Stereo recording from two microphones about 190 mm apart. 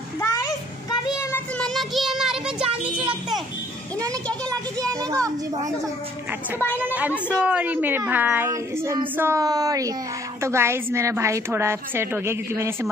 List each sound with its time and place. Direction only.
0.2 s a sound: 20° left (ahead or behind)
1.6 s child singing: centre (ahead or behind)
4.5 s a woman's voice: 20° right (ahead or behind)
6.8 s a woman's voice: 10° right (ahead or behind)